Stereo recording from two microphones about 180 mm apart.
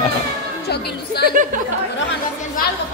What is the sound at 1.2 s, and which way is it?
Speech, 50° right (ahead or behind).